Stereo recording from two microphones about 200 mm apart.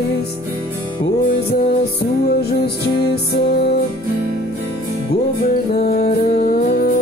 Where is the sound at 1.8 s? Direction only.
50° left (ahead or behind).